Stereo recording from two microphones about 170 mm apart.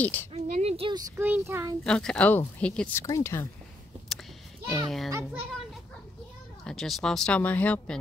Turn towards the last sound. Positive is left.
turn(degrees=10)  # may be behind; listen again after turning